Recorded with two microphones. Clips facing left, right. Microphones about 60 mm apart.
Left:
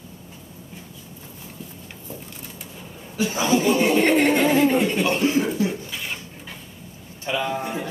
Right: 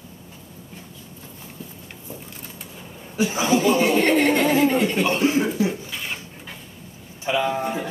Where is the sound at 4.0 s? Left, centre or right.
Left.